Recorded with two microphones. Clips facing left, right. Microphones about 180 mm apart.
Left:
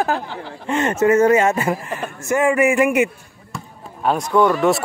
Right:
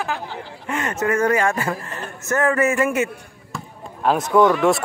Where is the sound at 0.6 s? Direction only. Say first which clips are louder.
Left 6 dB; 25° left (ahead or behind).